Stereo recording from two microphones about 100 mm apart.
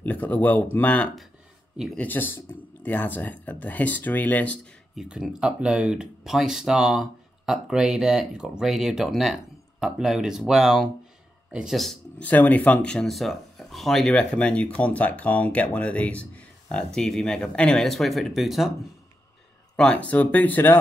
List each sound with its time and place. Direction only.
0.0 s speech: 15° left (ahead or behind)
4.9 s speech: 10° right (ahead or behind)
12.2 s speech: 15° left (ahead or behind); by 18.7 s centre (ahead or behind)
19.8 s speech: 10° left (ahead or behind)